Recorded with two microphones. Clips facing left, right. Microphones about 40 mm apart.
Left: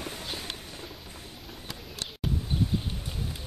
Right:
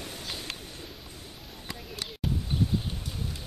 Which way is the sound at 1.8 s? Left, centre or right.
Centre.